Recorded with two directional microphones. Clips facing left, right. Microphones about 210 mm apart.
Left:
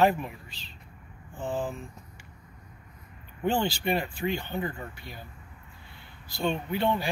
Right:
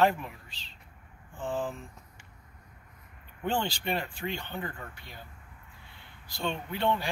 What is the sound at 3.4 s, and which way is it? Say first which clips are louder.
Speech: left 4 dB; 10° left (ahead or behind).